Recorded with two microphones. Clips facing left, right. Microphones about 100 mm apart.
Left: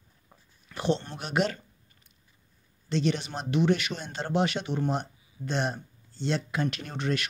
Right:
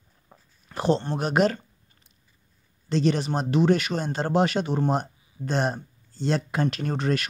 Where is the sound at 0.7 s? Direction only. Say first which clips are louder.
Right 5 dB; 40° right (ahead or behind).